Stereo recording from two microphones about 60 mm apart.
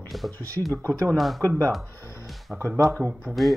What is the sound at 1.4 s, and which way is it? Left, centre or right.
Speech, right.